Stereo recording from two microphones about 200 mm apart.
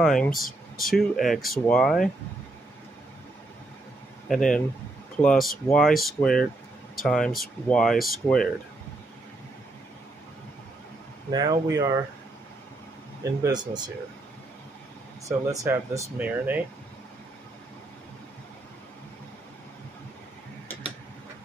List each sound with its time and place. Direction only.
0.0 s speech: centre (ahead or behind)
4.3 s speech: 5° left (ahead or behind)
11.2 s speech: 20° right (ahead or behind)
13.4 s speech: 20° right (ahead or behind)
15.2 s speech: 15° right (ahead or behind)